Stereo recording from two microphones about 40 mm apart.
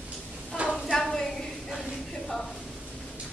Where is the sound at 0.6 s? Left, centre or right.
Right.